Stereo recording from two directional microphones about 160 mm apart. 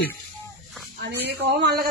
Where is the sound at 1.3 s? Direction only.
75° right (ahead or behind).